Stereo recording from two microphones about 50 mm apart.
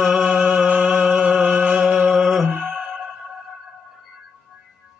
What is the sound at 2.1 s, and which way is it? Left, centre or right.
Music, centre.